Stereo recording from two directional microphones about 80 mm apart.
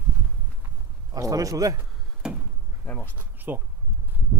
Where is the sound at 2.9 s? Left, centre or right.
Left.